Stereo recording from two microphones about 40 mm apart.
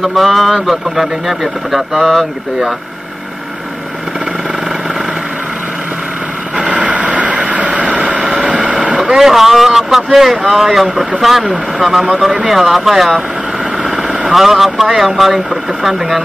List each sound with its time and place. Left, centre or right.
0.0 s speech: centre
6.6 s vehicle: right
8.1 s vehicle: right
8.9 s vehicle: centre
10.1 s speech: centre